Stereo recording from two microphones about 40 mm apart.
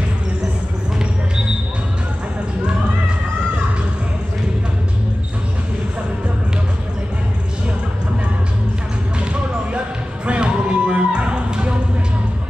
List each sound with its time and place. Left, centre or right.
9.2 s basketball bounce: right
10.2 s music: right